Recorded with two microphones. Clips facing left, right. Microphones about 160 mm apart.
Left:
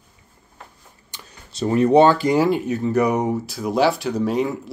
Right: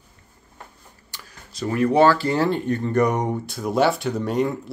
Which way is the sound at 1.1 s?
25° left (ahead or behind).